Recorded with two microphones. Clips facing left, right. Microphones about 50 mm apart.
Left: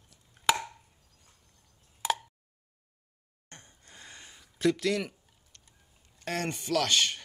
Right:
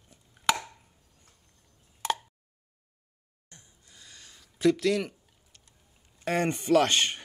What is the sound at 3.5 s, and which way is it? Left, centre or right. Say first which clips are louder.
Gasp: left 5 dB; left.